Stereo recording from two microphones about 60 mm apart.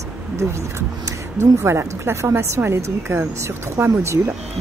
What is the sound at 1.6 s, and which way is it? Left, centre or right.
A woman's voice, right.